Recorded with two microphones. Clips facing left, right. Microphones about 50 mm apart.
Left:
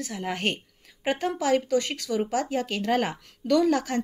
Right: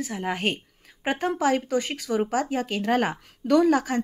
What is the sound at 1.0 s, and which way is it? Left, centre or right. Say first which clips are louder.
Speech: right 2 dB; right.